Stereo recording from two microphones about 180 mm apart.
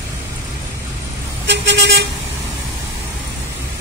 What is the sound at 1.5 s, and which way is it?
Vehicle, 85° right.